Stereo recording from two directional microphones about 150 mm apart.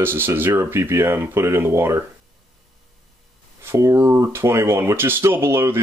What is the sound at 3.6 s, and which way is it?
Speech, 20° right (ahead or behind).